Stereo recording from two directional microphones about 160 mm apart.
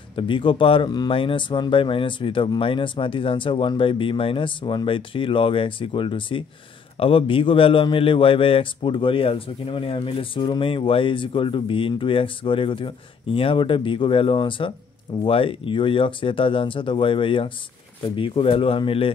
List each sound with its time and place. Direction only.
0.1 s a man's voice: 30° left (ahead or behind)